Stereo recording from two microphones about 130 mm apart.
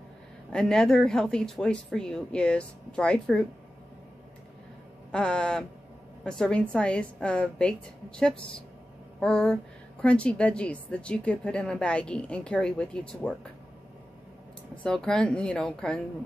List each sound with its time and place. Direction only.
0.5 s speech: 5° left (ahead or behind)
5.1 s a woman's voice: 5° left (ahead or behind)
14.8 s speech: 5° left (ahead or behind)